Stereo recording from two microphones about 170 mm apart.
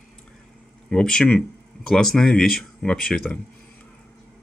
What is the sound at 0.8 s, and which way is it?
Speech, 5° left (ahead or behind).